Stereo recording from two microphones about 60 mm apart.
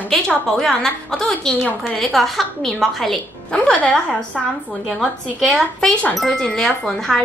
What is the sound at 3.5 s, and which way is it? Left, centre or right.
Speech, centre.